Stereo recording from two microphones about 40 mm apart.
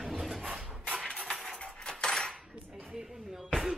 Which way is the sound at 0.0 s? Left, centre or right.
Centre.